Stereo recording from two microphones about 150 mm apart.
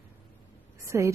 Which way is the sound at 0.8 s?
20° right (ahead or behind).